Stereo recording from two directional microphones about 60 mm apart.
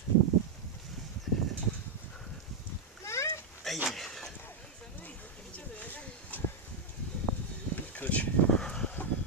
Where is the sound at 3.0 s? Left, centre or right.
Left.